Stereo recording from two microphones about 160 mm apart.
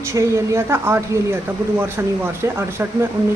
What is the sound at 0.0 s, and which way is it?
Speech, 20° right (ahead or behind).